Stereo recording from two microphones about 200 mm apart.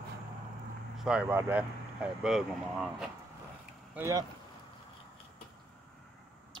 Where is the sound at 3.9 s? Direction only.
15° right (ahead or behind).